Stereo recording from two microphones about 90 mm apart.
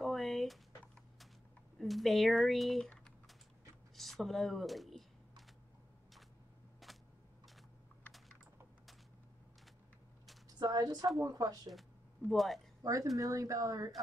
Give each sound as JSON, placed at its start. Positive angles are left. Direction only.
{"t": 0.0, "sound": "a sound", "side_deg": 0}
{"t": 1.8, "sound": "speech", "side_deg": 0}
{"t": 3.9, "sound": "speech", "side_deg": 0}
{"t": 6.8, "sound": "a sound", "side_deg": 0}
{"t": 10.6, "sound": "speech", "side_deg": -45}
{"t": 12.3, "sound": "speech", "side_deg": 0}
{"t": 12.8, "sound": "speech", "side_deg": -40}